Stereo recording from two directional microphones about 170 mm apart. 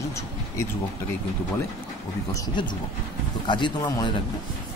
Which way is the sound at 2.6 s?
30° left (ahead or behind).